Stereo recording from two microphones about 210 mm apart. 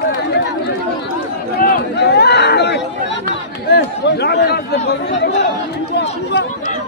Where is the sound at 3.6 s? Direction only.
50° left (ahead or behind).